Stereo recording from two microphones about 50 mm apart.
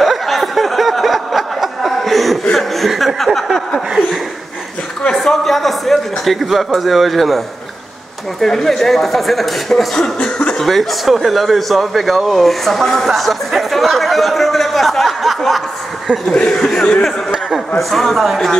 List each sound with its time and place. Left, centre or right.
0.0 s a sound: centre
2.5 s chuckle: centre
3.2 s a sound: centre
5.1 s speech: centre
9.9 s speech: centre
10.6 s speech: centre
16.1 s speech: centre